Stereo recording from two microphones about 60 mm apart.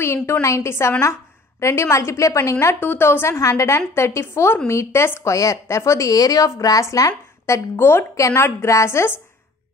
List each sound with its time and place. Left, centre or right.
0.0 s a woman's voice: left
2.7 s a woman's voice: left
3.3 s a woman's voice: left
5.3 s a woman's voice: left
7.7 s a woman's voice: left